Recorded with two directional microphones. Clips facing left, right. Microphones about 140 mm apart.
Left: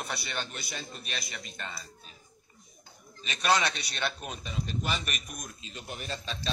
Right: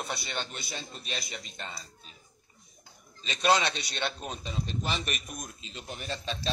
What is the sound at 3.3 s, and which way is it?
A man's voice, 20° right (ahead or behind).